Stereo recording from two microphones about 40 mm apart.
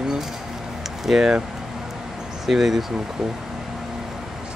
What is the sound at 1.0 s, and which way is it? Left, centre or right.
Speech, centre.